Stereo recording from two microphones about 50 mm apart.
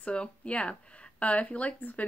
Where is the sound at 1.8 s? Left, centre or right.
Left.